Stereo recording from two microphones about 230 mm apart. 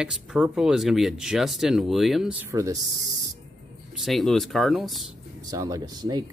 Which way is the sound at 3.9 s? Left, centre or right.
Centre.